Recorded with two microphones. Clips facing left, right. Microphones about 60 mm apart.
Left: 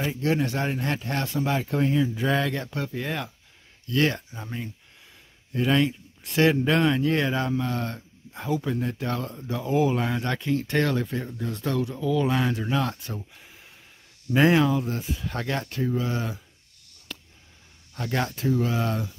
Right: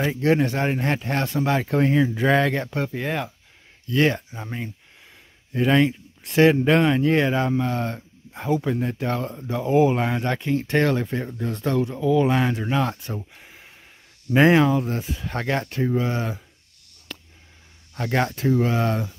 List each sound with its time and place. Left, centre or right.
0.2 s speech: right
1.3 s speech: right
2.5 s speech: right
14.3 s speech: right
17.9 s speech: right